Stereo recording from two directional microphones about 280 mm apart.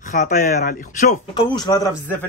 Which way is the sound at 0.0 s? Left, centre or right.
Left.